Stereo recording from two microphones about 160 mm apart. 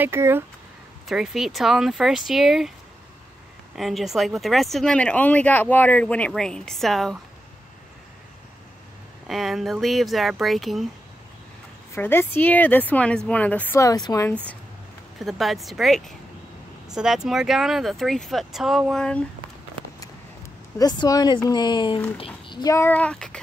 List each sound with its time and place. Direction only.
0.0 s speech: 15° right (ahead or behind)
1.0 s speech: centre (ahead or behind)
3.7 s speech: centre (ahead or behind)
9.3 s speech: centre (ahead or behind)
11.9 s a woman's voice: 15° left (ahead or behind)
15.1 s speech: centre (ahead or behind)
20.7 s a woman's voice: 25° left (ahead or behind); by 23.4 s 5° left (ahead or behind)